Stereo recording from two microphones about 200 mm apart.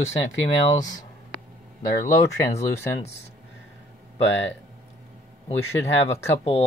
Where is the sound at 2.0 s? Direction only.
15° left (ahead or behind).